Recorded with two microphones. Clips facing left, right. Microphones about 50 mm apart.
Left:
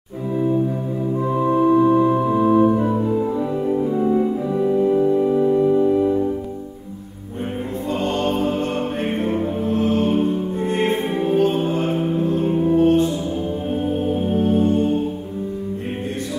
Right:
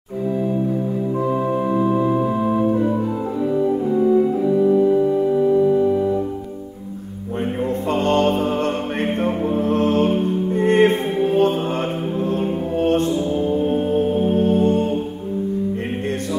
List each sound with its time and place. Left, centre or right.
1.6 s music: centre
2.6 s organ: centre
4.0 s music: centre
8.0 s music: right
14.5 s music: right